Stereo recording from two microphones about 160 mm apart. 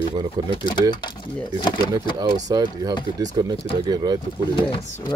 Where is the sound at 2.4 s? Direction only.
25° right (ahead or behind).